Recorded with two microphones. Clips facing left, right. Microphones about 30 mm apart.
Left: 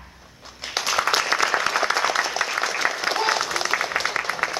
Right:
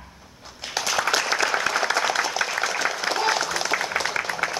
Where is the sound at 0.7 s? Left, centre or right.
Centre.